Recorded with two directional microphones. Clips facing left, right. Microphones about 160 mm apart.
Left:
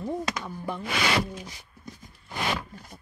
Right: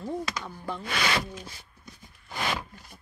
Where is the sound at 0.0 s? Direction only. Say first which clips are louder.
Left 2 dB; 20° left (ahead or behind).